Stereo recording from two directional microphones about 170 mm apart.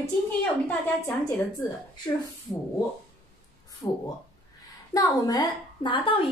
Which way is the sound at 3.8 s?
15° left (ahead or behind).